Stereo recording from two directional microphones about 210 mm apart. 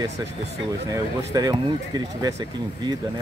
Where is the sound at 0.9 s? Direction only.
20° right (ahead or behind).